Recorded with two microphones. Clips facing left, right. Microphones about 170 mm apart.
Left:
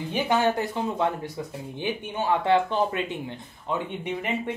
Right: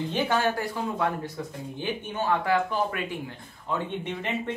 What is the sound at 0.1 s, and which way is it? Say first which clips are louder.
Speech: left 4 dB; 20° left (ahead or behind).